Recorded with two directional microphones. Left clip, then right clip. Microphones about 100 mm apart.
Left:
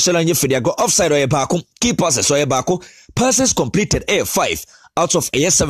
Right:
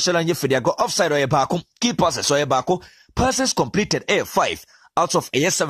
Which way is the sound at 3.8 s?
45° left (ahead or behind).